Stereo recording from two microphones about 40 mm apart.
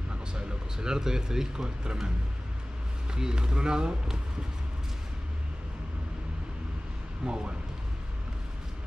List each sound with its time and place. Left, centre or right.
0.3 s speech: centre
3.2 s speech: centre
7.2 s speech: right